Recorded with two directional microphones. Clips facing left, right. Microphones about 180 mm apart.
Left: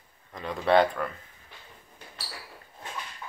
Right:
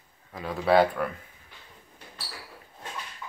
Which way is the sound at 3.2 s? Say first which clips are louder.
Right 2 dB; 20° left (ahead or behind).